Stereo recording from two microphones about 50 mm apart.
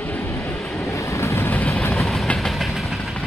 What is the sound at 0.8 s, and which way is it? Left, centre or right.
Vehicle, left.